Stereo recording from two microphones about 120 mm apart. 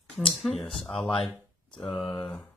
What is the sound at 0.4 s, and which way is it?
Speech, 5° left (ahead or behind).